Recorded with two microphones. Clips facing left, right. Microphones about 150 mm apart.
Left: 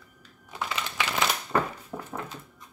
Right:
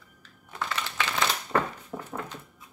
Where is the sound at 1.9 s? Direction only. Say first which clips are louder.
Even; 5° left (ahead or behind).